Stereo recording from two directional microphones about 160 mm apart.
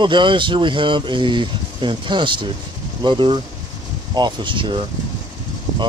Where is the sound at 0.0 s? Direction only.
30° right (ahead or behind).